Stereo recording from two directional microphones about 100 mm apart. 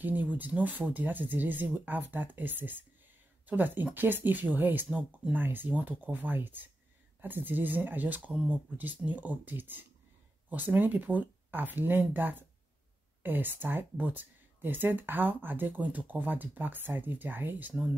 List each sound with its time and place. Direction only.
0.0 s speech: 20° right (ahead or behind)